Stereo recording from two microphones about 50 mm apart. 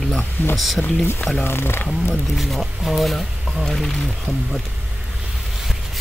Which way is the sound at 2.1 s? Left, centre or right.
Centre.